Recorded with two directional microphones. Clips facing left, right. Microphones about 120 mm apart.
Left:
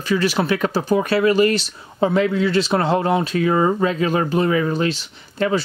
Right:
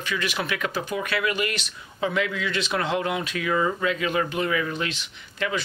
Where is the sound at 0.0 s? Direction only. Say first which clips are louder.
Left 9 dB; 35° left (ahead or behind).